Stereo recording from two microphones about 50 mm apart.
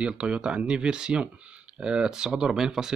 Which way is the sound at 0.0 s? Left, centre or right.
Centre.